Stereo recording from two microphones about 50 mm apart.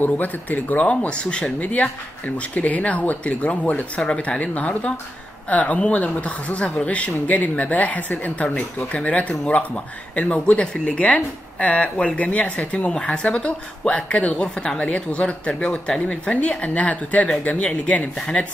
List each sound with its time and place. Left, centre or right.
0.0 s speech: left; by 1.5 s centre
1.6 s speech: left